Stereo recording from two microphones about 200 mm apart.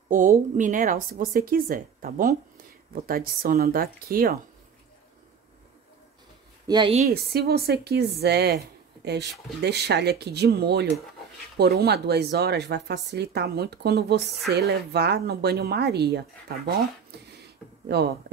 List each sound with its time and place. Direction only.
0.1 s speech: 40° right (ahead or behind)
6.7 s a woman's voice: 25° right (ahead or behind)
7.0 s speech: 50° right (ahead or behind)
9.6 s speech: 55° right (ahead or behind)
17.9 s speech: 55° right (ahead or behind)